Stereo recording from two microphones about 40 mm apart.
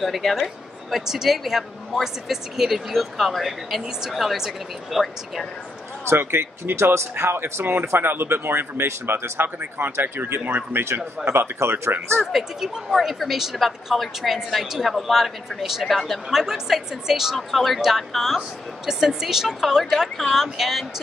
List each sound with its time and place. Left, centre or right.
0.0 s a woman's voice: centre
6.0 s speech: right
9.9 s speech: right
12.5 s a woman's voice: centre
16.3 s a woman's voice: centre
17.4 s a woman's voice: centre